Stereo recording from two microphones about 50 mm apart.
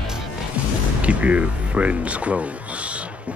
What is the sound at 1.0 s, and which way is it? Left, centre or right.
Speech, right.